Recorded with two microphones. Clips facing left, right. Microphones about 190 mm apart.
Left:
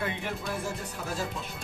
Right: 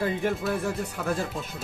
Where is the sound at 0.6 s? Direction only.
60° right (ahead or behind).